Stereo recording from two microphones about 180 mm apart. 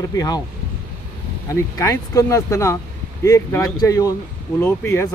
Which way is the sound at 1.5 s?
15° left (ahead or behind).